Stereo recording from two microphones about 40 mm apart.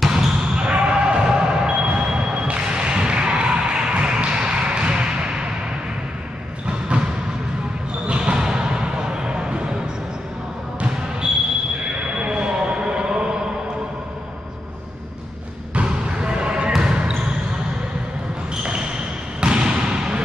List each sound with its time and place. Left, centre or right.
0.1 s basketball bounce: centre
1.4 s a sound: right
8.1 s basketball bounce: right
12.2 s a sound: right
15.7 s basketball bounce: right
18.5 s basketball bounce: right